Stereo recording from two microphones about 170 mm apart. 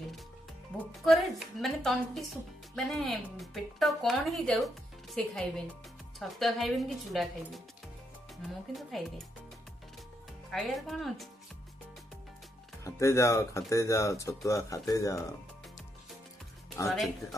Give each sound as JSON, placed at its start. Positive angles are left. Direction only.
{"t": 1.0, "sound": "speech", "side_deg": 0}
{"t": 8.9, "sound": "speech", "side_deg": 0}
{"t": 10.5, "sound": "speech", "side_deg": 0}
{"t": 12.8, "sound": "speech", "side_deg": 15}
{"t": 16.8, "sound": "speech", "side_deg": 20}